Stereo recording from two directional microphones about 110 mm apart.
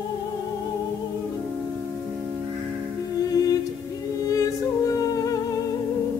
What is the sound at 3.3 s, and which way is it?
Music, 35° left (ahead or behind).